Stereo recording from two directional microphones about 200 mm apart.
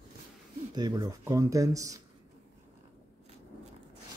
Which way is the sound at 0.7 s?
20° right (ahead or behind).